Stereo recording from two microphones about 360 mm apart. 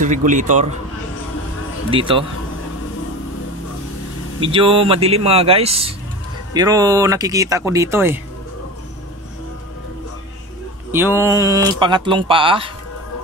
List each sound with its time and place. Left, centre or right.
0.0 s a man's voice: right
1.9 s speech: centre
4.4 s speech: centre
10.9 s speech: centre